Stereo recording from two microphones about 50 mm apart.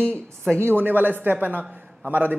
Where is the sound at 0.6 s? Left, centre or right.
Right.